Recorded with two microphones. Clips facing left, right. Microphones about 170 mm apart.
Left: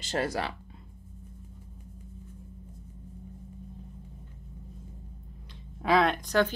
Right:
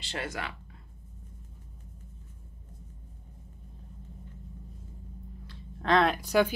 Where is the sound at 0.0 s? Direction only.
40° left (ahead or behind).